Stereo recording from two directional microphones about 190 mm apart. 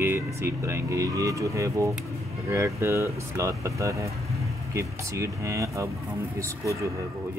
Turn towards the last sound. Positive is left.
turn(degrees=-15)  # may be behind; listen again after turning